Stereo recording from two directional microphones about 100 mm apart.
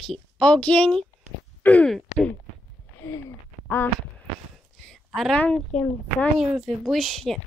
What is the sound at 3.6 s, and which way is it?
Speech, 20° left (ahead or behind).